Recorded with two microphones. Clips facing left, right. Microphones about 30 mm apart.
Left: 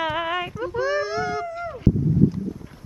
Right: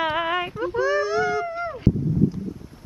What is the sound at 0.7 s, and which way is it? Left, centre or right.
Whimper, centre.